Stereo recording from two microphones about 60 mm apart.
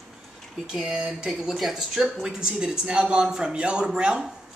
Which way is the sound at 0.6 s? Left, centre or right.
Centre.